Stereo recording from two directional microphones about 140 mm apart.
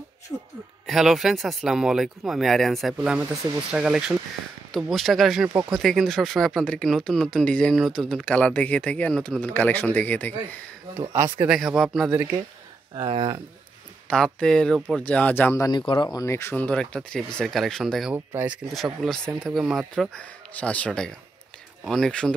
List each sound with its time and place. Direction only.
0.3 s speech: 10° left (ahead or behind)
11.0 s speech: 15° right (ahead or behind)
12.9 s speech: 40° right (ahead or behind)
14.0 s speech: 5° left (ahead or behind)
15.7 s speech: 35° left (ahead or behind); by 18.1 s centre (ahead or behind)
18.1 s speech: 15° right (ahead or behind)
18.9 s speech: 5° left (ahead or behind)